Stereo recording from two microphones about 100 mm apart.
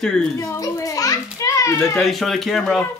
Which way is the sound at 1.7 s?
5° left (ahead or behind).